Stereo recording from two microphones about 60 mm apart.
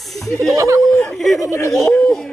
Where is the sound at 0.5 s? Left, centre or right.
Right.